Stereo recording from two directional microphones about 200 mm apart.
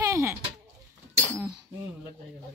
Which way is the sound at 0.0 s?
15° right (ahead or behind).